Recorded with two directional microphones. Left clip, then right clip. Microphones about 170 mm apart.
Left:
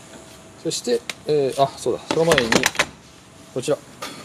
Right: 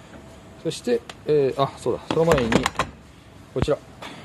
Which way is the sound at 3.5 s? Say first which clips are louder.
Left 1 dB; centre (ahead or behind).